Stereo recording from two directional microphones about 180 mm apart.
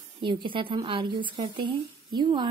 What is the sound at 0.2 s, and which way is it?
A woman's voice, 25° right (ahead or behind).